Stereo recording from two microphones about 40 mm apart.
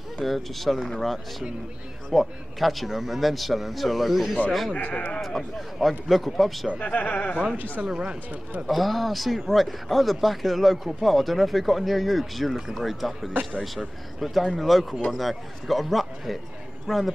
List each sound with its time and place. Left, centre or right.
0.2 s speech: centre
4.7 s speech: left
5.2 s speech: centre
6.8 s speech: left
7.8 s speech: centre
13.3 s speech: right
14.2 s speech: centre